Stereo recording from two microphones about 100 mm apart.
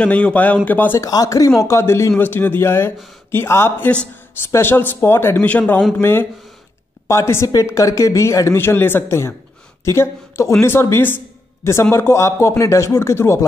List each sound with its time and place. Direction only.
0.0 s speech: 10° left (ahead or behind)
1.0 s speech: 35° left (ahead or behind)